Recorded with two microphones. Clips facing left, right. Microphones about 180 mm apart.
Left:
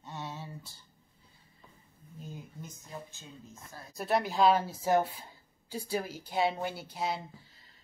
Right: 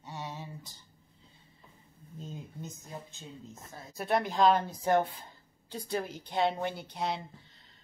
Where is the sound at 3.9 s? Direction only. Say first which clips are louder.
Even; centre (ahead or behind).